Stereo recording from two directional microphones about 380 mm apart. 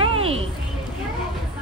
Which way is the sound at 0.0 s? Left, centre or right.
Centre.